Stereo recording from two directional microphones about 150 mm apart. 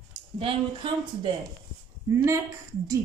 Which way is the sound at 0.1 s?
35° right (ahead or behind).